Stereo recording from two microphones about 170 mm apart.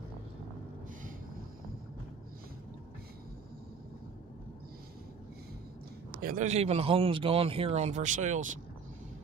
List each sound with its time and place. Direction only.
6.2 s a man's voice: 45° right (ahead or behind)